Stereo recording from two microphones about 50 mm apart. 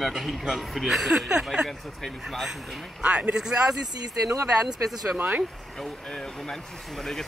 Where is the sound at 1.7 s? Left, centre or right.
Centre.